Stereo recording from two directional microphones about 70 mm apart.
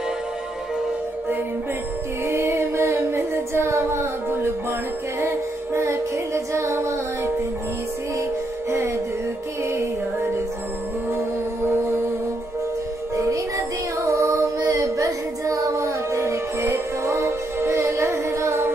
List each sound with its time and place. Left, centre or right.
2.2 s a capella: right
5.2 s music: right
13.1 s music: right
14.0 s child singing: right